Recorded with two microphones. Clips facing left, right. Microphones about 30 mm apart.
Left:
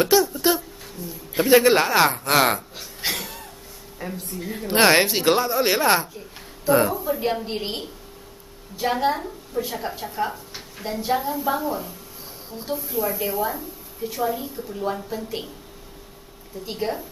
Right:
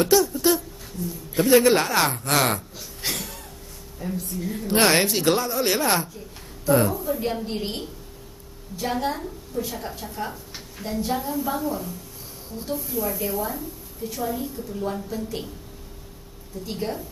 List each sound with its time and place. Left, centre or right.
0.0 s speech: centre
4.1 s a woman's voice: left
12.7 s a woman's voice: centre
16.6 s a woman's voice: centre